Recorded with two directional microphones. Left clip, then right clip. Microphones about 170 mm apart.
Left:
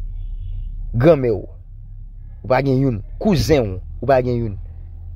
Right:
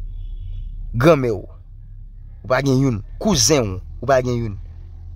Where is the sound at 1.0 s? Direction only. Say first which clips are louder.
Left 1 dB; 15° right (ahead or behind).